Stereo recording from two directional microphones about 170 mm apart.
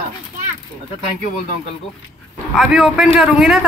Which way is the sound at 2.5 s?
5° right (ahead or behind).